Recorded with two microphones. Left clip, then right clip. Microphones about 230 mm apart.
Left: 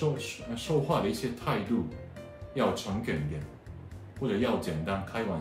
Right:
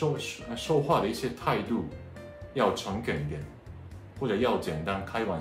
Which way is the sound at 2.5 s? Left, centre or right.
Centre.